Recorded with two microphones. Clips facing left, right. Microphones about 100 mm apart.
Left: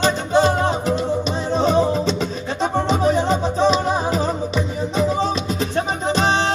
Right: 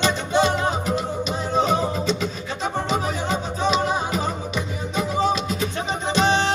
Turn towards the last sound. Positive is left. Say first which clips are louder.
# left 1 dB
turn(degrees=35)  # may be behind; listen again after turning